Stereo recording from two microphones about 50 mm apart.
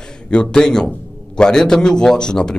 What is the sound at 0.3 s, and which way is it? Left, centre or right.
Speech, centre.